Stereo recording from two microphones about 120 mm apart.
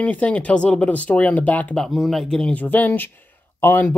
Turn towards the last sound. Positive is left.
turn(degrees=15)  # may be behind; listen again after turning